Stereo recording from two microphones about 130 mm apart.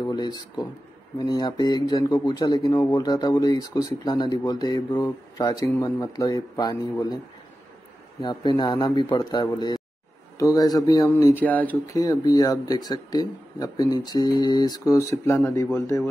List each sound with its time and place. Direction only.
0.0 s speech: 35° left (ahead or behind)
8.2 s speech: 35° left (ahead or behind)
11.3 s speech: 15° left (ahead or behind)
11.9 s speech: 25° left (ahead or behind)